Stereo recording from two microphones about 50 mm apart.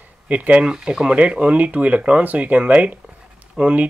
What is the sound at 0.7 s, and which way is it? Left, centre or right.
Speech, centre.